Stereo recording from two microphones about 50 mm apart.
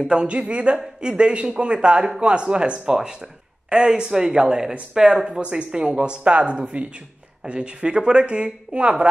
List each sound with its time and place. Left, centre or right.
0.0 s a man's voice: centre
5.4 s a man's voice: right